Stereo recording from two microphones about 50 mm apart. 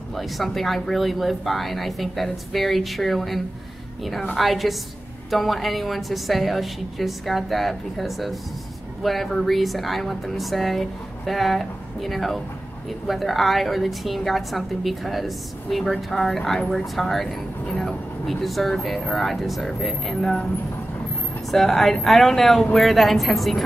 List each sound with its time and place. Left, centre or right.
0.1 s a woman's voice: centre
21.5 s a woman's voice: centre